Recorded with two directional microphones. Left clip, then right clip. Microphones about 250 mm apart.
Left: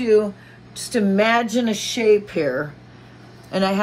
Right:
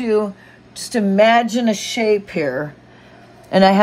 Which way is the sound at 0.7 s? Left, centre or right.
Right.